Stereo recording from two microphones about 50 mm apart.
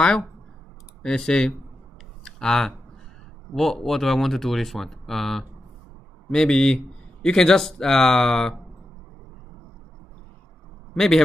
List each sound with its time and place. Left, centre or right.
1.0 s a man's voice: centre
2.2 s a sound: centre
3.5 s a man's voice: centre
11.0 s a man's voice: centre